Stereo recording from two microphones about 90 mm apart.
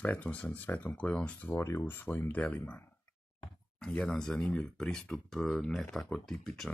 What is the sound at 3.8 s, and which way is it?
Speech, 10° left (ahead or behind).